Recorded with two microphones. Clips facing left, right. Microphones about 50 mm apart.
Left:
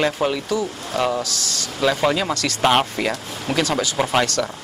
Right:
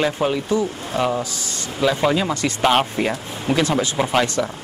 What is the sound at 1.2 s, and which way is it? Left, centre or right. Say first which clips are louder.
Speech: left 1 dB; left.